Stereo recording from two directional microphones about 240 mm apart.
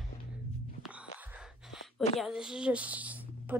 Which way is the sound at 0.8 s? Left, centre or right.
Centre.